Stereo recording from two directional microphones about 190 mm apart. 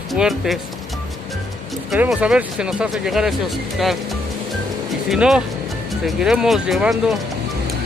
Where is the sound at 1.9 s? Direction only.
5° right (ahead or behind).